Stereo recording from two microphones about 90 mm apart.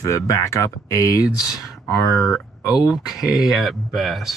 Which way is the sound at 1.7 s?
Centre (ahead or behind).